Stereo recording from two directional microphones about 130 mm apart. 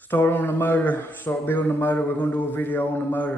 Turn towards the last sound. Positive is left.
turn(degrees=15)  # may be behind; listen again after turning